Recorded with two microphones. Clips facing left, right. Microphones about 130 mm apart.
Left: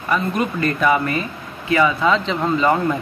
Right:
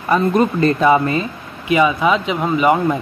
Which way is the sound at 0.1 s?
30° right (ahead or behind).